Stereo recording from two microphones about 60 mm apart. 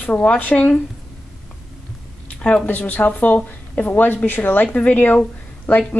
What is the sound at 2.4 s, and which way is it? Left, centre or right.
A woman's voice, left.